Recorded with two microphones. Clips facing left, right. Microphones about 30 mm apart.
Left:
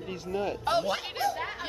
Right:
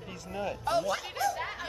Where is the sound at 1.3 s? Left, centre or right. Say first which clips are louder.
Left 1 dB; centre.